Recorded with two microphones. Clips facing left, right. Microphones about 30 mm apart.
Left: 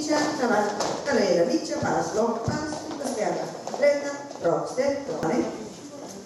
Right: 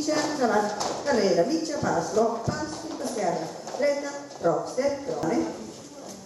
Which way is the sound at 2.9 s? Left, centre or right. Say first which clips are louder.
Even; centre.